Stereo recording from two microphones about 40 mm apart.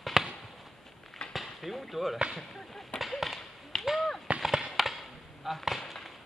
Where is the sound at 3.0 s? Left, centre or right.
Centre.